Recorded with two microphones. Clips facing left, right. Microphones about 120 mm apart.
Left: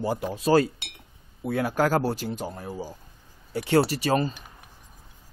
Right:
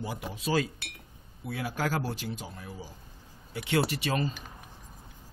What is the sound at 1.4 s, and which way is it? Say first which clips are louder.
Speech: left 8 dB; 50° left (ahead or behind).